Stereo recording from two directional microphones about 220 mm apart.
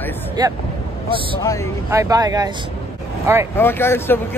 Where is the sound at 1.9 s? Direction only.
15° right (ahead or behind).